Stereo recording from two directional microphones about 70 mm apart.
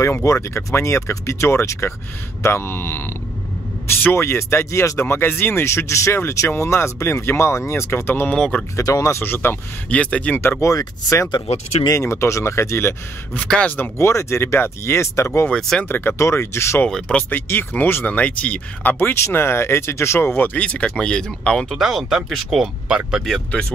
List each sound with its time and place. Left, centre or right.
0.0 s speech: left
5.7 s speech: left
8.3 s speech: centre
8.7 s speech: left
9.2 s speech: left
9.8 s speech: centre
10.6 s speech: left
11.9 s speech: left
13.9 s speech: left
15.5 s speech: centre
15.9 s speech: left
16.2 s speech: left
17.1 s speech: left; by 21.7 s centre
21.7 s speech: centre